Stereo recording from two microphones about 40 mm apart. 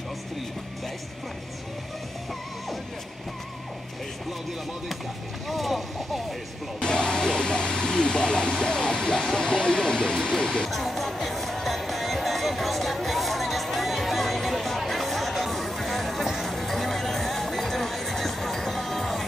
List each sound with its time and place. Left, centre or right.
5.5 s vehicle: centre
6.8 s vehicle: left
9.2 s a sound: left
10.7 s music: centre